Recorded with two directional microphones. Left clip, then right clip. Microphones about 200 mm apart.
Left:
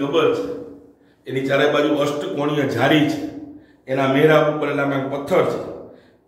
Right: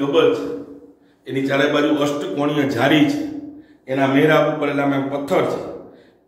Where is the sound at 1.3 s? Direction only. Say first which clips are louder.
Even; centre (ahead or behind).